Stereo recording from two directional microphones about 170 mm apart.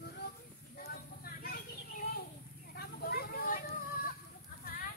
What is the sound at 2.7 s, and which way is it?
Vehicle, 65° left (ahead or behind).